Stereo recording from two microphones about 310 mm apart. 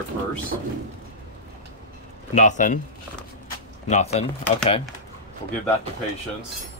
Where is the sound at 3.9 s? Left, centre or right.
Left.